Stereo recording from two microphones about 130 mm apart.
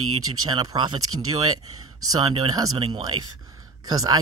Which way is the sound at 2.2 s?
45° right (ahead or behind).